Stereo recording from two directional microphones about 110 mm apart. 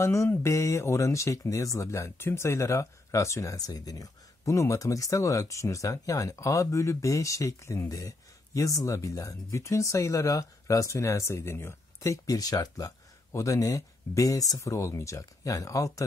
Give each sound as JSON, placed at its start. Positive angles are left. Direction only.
{"t": 0.0, "sound": "speech", "side_deg": 25}